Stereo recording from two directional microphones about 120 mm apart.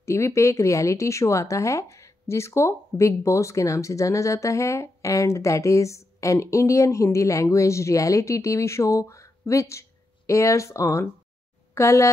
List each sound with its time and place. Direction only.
0.0 s speech: 25° left (ahead or behind)